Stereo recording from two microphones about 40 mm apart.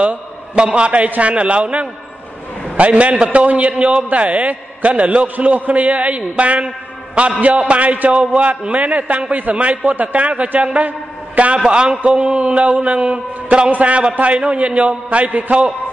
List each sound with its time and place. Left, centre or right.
0.6 s a man's voice: right
10.9 s a sound: right
11.6 s a man's voice: right